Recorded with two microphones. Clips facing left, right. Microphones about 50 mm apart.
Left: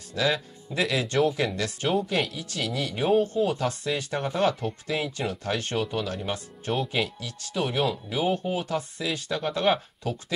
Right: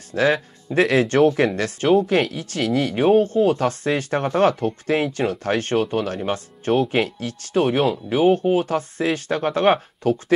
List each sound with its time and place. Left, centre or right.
0.1 s speech: right